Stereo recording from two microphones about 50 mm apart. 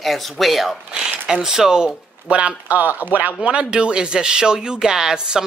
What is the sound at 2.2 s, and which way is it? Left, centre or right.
Speech, right.